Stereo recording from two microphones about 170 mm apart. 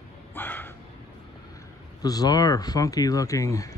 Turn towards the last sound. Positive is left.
turn(degrees=20)  # may be behind; listen again after turning